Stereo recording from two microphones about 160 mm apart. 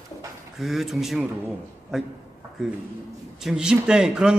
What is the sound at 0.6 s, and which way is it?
Speech, centre (ahead or behind).